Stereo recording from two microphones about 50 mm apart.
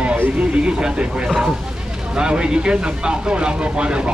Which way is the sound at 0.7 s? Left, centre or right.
Centre.